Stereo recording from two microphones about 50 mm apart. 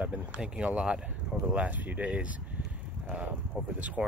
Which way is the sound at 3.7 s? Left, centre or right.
Right.